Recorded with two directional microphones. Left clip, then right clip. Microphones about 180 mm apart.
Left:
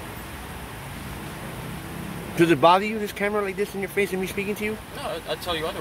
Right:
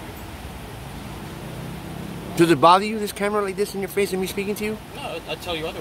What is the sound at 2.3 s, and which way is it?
Speech, 10° right (ahead or behind).